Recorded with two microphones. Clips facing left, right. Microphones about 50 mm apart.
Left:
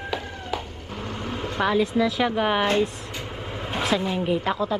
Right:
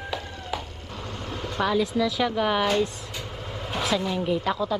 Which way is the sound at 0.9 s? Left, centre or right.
Left.